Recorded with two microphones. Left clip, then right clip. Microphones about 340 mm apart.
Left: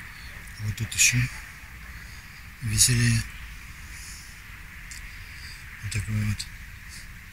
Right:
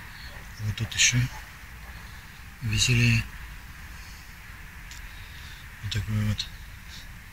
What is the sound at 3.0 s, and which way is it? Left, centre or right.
Speech, right.